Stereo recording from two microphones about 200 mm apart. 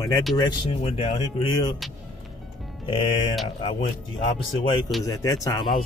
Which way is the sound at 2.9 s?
25° left (ahead or behind).